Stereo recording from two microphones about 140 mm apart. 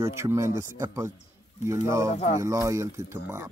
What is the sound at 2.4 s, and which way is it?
A man's voice, 20° right (ahead or behind).